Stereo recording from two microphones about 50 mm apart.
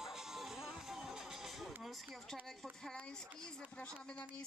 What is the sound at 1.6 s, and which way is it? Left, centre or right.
Speech, centre.